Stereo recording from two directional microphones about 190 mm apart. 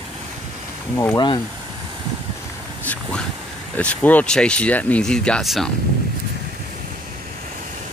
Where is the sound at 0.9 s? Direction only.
20° left (ahead or behind).